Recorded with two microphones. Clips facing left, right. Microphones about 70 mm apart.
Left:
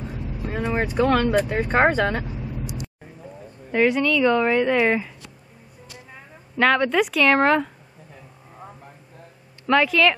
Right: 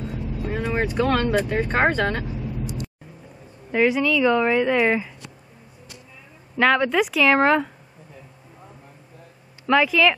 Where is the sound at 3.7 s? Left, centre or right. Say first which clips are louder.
Even; centre.